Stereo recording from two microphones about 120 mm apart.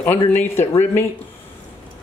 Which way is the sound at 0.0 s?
20° left (ahead or behind).